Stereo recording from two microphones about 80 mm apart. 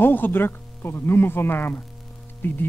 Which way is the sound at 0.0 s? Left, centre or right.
Left.